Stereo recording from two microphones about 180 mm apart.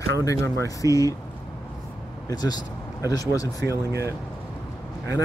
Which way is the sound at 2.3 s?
20° left (ahead or behind).